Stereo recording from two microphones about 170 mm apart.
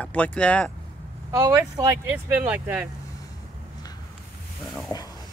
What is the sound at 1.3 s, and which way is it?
Speech, 20° right (ahead or behind).